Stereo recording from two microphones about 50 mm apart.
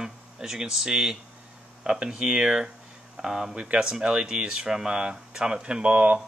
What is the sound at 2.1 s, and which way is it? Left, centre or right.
Speech, centre.